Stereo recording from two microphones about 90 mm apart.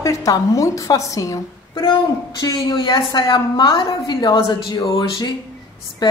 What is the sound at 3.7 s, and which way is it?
A woman's voice, 50° left (ahead or behind).